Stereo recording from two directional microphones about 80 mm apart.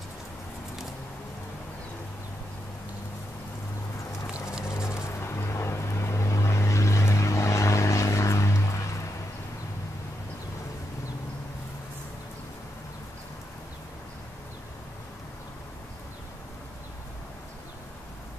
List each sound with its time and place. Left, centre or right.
4.6 s vehicle: left